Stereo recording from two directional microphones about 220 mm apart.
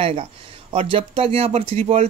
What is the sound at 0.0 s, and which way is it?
Speech, 25° right (ahead or behind).